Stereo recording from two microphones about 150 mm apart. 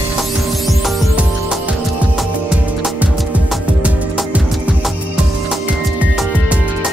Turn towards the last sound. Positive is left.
turn(degrees=-10)  # may be behind; listen again after turning